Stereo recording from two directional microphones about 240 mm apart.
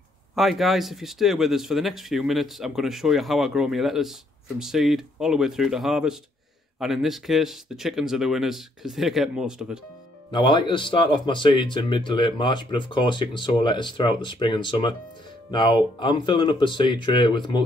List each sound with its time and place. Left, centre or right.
0.4 s speech: centre
10.3 s speech: centre